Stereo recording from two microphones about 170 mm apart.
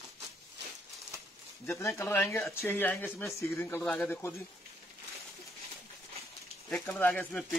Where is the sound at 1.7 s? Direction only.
15° left (ahead or behind).